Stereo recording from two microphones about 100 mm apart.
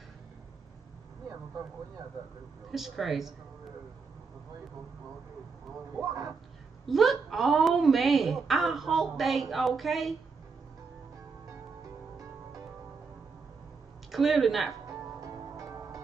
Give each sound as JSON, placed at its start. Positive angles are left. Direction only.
{"t": 2.7, "sound": "a woman's voice", "side_deg": 0}
{"t": 6.0, "sound": "speech", "side_deg": -35}
{"t": 6.9, "sound": "a woman's voice", "side_deg": 0}
{"t": 14.1, "sound": "a woman's voice", "side_deg": 0}
{"t": 14.9, "sound": "music", "side_deg": -35}